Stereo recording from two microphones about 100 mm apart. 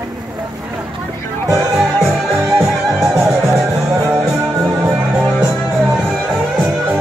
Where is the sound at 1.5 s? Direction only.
Centre (ahead or behind).